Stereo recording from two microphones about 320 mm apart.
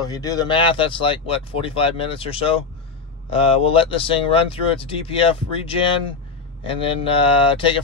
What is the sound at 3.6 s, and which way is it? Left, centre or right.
Speech, centre.